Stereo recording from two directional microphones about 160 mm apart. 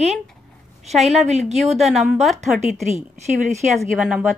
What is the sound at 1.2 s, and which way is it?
Speech, 45° right (ahead or behind).